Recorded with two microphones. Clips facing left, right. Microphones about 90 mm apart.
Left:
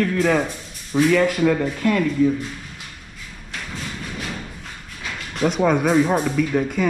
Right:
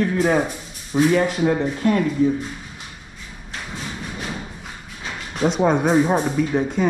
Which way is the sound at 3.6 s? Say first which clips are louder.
Right 1 dB; 15° right (ahead or behind).